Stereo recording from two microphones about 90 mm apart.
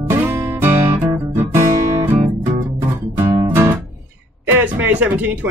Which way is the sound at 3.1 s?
25° right (ahead or behind).